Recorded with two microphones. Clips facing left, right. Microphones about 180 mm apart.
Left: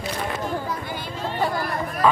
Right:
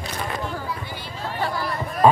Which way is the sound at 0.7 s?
50° left (ahead or behind).